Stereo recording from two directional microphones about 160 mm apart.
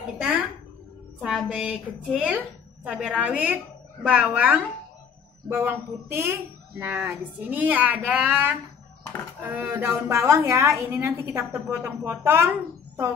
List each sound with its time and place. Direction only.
1.2 s a woman's voice: centre (ahead or behind)